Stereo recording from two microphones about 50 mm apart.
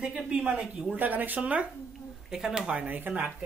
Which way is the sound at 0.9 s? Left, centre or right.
Right.